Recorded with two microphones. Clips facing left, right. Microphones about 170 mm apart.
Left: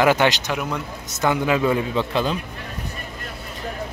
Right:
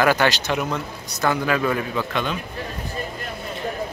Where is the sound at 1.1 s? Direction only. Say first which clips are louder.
Left 1 dB; 20° left (ahead or behind).